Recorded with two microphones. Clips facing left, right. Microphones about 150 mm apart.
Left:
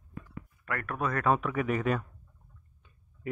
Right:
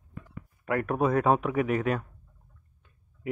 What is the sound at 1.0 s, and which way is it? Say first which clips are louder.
Speech: right 4 dB; 20° right (ahead or behind).